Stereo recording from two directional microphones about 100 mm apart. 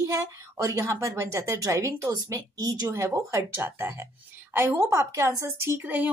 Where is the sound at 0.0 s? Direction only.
30° right (ahead or behind).